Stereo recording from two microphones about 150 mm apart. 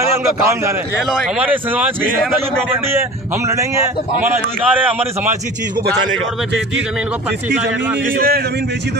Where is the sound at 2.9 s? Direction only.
20° right (ahead or behind).